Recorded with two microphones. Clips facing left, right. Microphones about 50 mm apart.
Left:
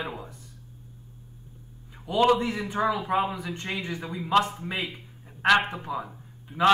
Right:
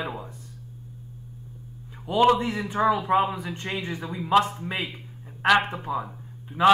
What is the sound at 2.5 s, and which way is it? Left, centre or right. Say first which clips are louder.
A man's voice: right 3 dB; centre.